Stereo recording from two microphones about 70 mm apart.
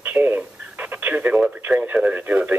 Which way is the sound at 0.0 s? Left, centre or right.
Right.